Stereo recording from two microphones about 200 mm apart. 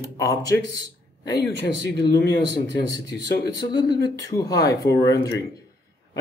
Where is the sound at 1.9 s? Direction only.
60° left (ahead or behind).